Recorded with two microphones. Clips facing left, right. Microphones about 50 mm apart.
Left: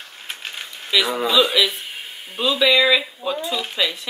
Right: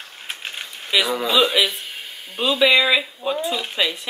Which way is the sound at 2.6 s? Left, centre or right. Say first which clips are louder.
Even; centre.